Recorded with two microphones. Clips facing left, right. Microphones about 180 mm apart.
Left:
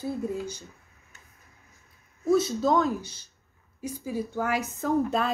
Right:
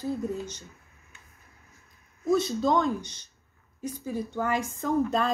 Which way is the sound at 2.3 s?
5° left (ahead or behind).